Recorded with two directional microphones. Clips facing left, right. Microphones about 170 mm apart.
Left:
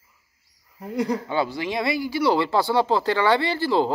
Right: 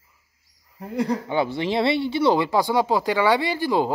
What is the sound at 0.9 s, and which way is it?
Speech, 20° right (ahead or behind).